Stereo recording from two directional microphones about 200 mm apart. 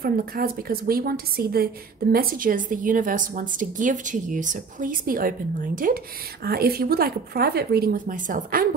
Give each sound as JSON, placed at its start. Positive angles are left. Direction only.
{"t": 0.0, "sound": "a woman's voice", "side_deg": -50}